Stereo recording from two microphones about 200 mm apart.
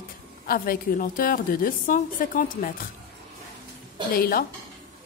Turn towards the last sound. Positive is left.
turn(degrees=50)  # may be behind; listen again after turning